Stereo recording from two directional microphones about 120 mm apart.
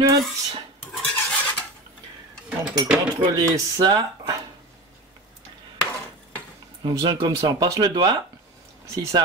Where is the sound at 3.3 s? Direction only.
35° right (ahead or behind).